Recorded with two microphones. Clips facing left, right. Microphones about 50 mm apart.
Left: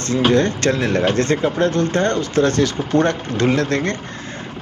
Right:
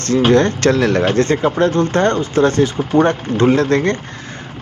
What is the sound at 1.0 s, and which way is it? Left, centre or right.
Speech, right.